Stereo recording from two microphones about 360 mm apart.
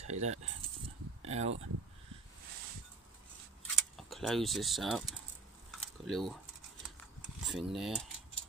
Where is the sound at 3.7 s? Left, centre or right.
Centre.